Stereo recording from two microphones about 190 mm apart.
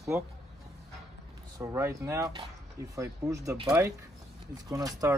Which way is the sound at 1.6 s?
15° right (ahead or behind).